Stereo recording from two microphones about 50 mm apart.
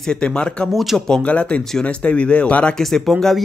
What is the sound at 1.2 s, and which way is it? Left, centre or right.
Speech, left.